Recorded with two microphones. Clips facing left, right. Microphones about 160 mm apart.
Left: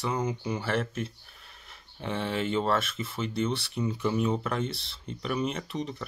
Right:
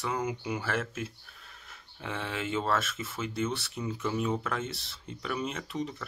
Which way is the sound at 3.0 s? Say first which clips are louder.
Left 3 dB; 5° right (ahead or behind).